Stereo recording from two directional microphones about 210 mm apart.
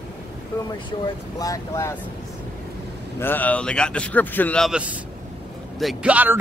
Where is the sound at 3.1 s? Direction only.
10° left (ahead or behind).